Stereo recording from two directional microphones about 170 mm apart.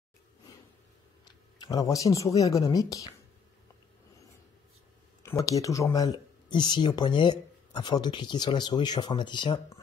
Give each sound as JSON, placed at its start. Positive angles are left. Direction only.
{"t": 1.2, "sound": "speech", "side_deg": 25}
{"t": 5.2, "sound": "speech", "side_deg": 20}